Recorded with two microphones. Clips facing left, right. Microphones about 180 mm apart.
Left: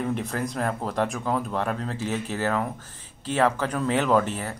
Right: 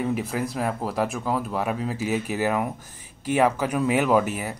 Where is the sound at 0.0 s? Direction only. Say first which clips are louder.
Right 2 dB; 5° right (ahead or behind).